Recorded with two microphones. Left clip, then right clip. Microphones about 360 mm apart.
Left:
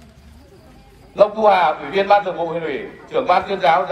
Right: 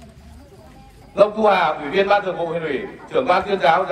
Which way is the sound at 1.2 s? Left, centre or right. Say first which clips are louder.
Left 2 dB; left.